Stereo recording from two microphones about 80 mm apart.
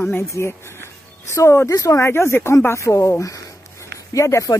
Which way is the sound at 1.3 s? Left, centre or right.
Left.